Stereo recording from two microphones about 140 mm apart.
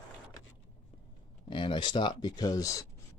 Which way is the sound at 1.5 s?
35° left (ahead or behind).